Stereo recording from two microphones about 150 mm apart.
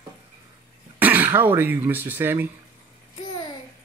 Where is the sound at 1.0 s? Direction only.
10° right (ahead or behind).